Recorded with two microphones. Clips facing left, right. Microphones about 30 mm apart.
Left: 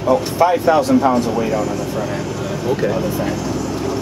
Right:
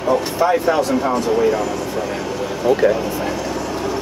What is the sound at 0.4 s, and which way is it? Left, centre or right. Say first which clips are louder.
Speech: left 3 dB; centre.